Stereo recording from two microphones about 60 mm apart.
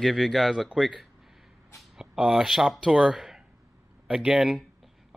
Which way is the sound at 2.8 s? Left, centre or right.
Centre.